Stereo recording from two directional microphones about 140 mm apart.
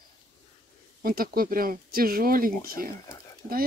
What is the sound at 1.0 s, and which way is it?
Speech, 90° right.